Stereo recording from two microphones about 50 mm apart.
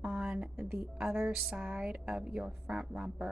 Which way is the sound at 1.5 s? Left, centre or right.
Right.